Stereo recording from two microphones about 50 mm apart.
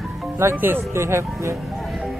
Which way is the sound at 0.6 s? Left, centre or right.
Right.